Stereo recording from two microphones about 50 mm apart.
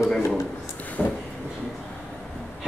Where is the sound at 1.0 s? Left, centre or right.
Centre.